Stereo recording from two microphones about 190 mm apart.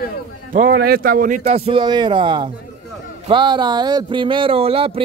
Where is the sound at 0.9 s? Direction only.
50° right (ahead or behind).